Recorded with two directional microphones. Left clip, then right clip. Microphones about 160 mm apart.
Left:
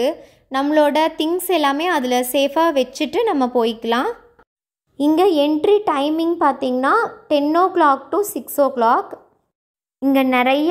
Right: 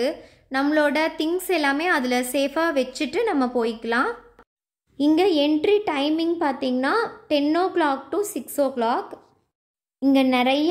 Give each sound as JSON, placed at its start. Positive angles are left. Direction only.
{"t": 0.0, "sound": "a woman's voice", "side_deg": 25}
{"t": 4.9, "sound": "a woman's voice", "side_deg": 20}
{"t": 9.9, "sound": "speech", "side_deg": 10}